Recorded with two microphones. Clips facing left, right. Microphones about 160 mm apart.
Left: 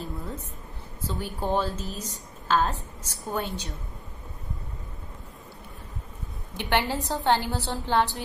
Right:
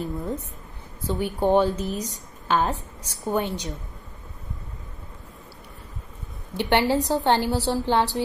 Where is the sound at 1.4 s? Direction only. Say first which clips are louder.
Right 7 dB; 20° right (ahead or behind).